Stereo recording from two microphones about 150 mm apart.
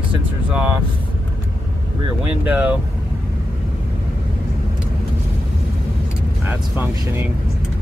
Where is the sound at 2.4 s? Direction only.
10° right (ahead or behind).